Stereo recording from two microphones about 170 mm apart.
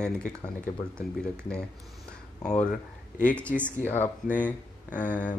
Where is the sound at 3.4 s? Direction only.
5° left (ahead or behind).